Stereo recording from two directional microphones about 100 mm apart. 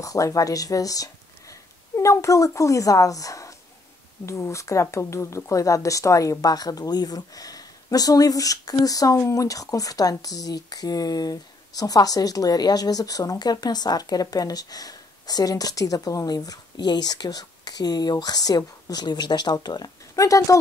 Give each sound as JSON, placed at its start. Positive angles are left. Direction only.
{"t": 0.0, "sound": "speech", "side_deg": 35}